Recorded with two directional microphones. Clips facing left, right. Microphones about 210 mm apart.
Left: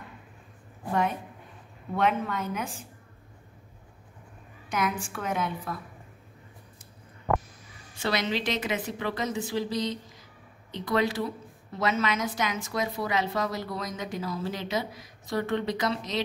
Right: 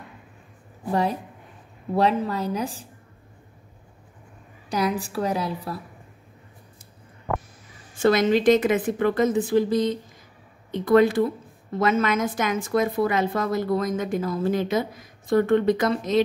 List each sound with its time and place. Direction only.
2.0 s a woman's voice: 35° right (ahead or behind)
4.6 s a woman's voice: 35° right (ahead or behind)
7.9 s a woman's voice: 50° right (ahead or behind)